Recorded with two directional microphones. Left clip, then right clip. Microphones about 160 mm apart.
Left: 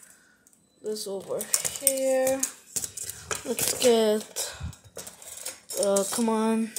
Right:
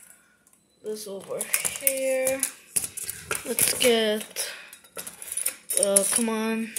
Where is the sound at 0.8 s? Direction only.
25° left (ahead or behind).